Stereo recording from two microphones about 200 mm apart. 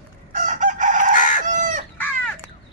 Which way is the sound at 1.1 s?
40° left (ahead or behind).